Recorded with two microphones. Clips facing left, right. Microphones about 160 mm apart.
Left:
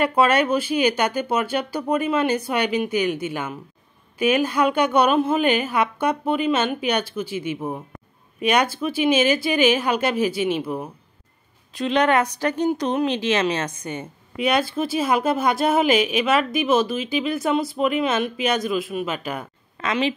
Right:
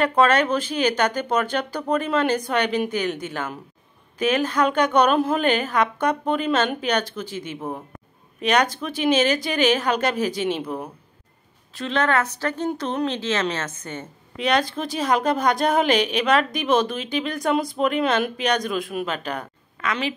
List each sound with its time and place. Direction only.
0.0 s speech: 10° left (ahead or behind)
19.8 s a woman's voice: 25° left (ahead or behind)